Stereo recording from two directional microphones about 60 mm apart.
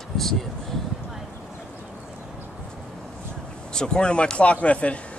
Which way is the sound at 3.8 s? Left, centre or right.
Centre.